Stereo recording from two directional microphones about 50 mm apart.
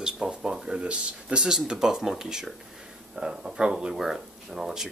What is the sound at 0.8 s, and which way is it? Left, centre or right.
Speech, right.